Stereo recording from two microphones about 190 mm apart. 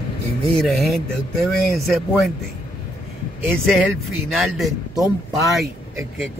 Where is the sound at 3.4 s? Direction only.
5° right (ahead or behind).